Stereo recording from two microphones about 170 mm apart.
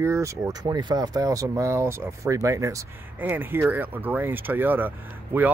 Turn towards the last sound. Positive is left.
turn(degrees=-10)  # may be behind; listen again after turning